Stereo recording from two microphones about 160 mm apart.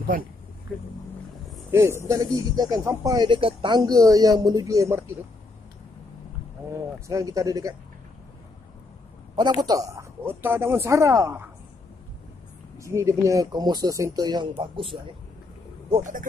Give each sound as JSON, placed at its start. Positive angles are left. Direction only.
{"t": 0.1, "sound": "speech", "side_deg": -60}
{"t": 1.7, "sound": "speech", "side_deg": -15}
{"t": 7.1, "sound": "speech", "side_deg": -20}
{"t": 9.3, "sound": "speech", "side_deg": -30}
{"t": 12.7, "sound": "speech", "side_deg": -20}
{"t": 16.0, "sound": "speech", "side_deg": -55}